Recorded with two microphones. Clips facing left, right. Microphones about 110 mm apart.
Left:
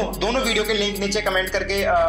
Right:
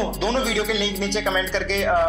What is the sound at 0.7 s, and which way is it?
Speech, 25° right (ahead or behind).